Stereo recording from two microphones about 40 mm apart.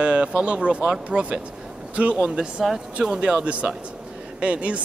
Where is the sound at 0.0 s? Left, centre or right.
Right.